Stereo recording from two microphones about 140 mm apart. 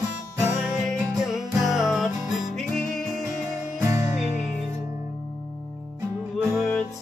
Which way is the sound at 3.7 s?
20° right (ahead or behind).